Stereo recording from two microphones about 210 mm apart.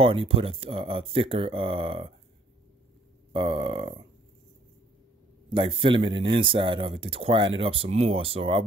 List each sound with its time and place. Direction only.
0.0 s speech: 25° right (ahead or behind)
3.3 s speech: 25° right (ahead or behind)
5.5 s speech: 25° right (ahead or behind)